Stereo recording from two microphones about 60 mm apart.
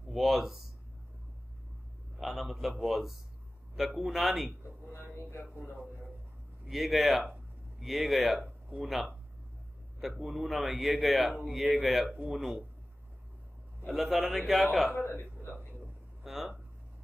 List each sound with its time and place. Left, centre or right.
0.1 s a man's voice: centre
2.1 s a man's voice: centre
6.7 s a man's voice: centre
13.9 s a man's voice: centre
15.0 s speech: left
16.3 s a man's voice: centre